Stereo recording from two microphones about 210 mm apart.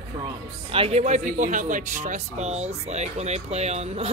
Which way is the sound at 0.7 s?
30° right (ahead or behind).